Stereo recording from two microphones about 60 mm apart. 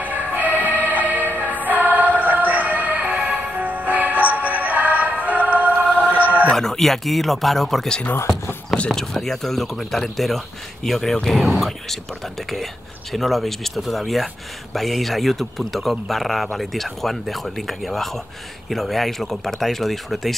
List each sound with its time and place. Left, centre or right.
0.0 s music: right
5.9 s music: centre
6.5 s speech: centre
13.1 s speech: centre